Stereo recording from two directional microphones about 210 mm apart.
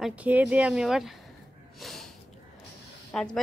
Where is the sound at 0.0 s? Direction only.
5° right (ahead or behind).